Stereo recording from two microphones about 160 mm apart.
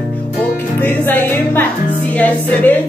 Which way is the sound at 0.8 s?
10° left (ahead or behind).